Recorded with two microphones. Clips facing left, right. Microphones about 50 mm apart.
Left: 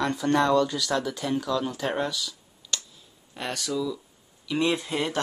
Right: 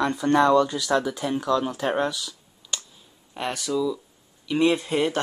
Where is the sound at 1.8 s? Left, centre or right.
Centre.